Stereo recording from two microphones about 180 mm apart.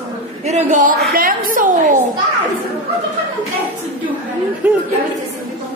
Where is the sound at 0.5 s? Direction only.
40° right (ahead or behind).